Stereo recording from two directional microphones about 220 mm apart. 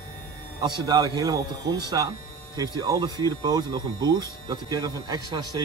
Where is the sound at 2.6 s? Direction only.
15° right (ahead or behind).